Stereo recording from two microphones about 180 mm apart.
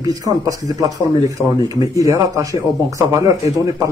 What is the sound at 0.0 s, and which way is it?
Speech, 20° right (ahead or behind).